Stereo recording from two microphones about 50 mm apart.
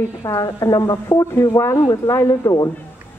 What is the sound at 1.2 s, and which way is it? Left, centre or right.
Speech, left.